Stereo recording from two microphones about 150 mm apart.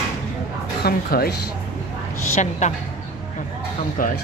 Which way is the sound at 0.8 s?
90° left.